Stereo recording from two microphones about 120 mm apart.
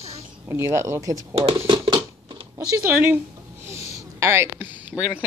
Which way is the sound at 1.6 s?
40° right (ahead or behind).